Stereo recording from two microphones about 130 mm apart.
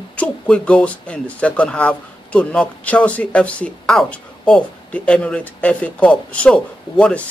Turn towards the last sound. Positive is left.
turn(degrees=10)  # may be behind; listen again after turning